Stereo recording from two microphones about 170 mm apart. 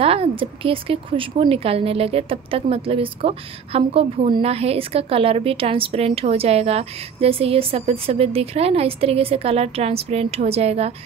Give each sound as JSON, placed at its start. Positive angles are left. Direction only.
{"t": 0.0, "sound": "a woman's voice", "side_deg": -35}